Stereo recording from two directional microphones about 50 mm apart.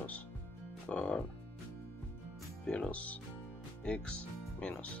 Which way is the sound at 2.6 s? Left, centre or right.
Left.